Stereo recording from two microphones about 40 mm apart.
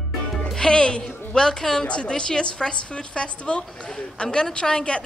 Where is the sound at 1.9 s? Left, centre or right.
Left.